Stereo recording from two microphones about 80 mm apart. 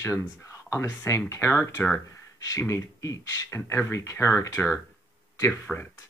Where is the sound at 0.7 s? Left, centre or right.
Left.